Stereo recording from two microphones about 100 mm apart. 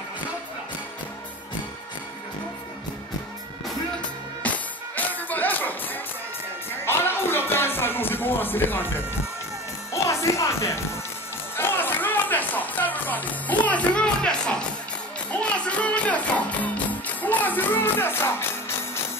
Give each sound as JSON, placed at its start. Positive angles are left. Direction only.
{"t": 4.4, "sound": "music", "side_deg": 15}
{"t": 6.8, "sound": "music", "side_deg": 25}
{"t": 10.0, "sound": "music", "side_deg": 30}
{"t": 11.5, "sound": "speech", "side_deg": 20}